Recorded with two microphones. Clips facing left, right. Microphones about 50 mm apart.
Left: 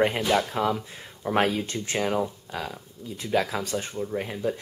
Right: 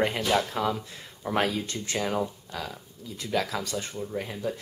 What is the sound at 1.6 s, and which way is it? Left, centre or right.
Speech, left.